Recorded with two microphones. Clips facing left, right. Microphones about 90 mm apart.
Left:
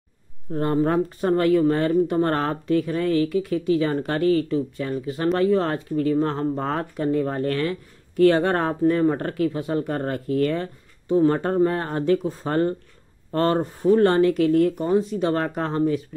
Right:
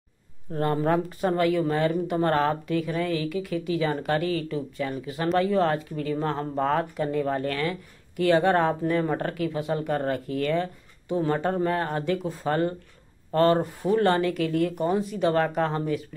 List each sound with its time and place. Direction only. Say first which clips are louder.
0.5 s speech: left 2 dB; 25° left (ahead or behind)